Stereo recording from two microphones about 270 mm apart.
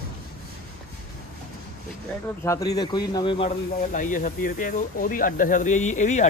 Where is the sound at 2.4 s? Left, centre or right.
Centre.